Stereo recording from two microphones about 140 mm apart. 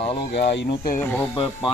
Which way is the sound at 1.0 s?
15° left (ahead or behind).